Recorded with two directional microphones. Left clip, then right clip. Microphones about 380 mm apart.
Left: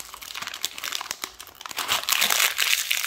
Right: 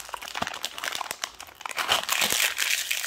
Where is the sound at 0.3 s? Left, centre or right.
Centre.